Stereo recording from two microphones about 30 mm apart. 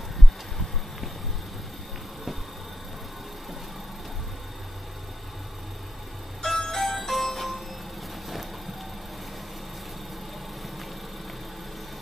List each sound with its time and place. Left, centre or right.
6.4 s music: centre